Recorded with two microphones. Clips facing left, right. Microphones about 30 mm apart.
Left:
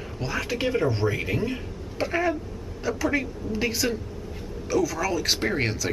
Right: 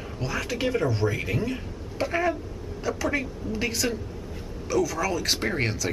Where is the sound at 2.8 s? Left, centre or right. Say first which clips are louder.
Left 2 dB; centre.